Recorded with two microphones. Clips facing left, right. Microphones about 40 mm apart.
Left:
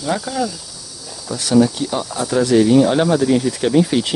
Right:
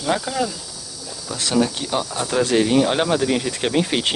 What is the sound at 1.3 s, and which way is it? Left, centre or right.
Speech, right.